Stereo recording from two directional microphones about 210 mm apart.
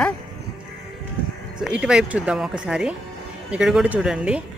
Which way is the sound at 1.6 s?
5° right (ahead or behind).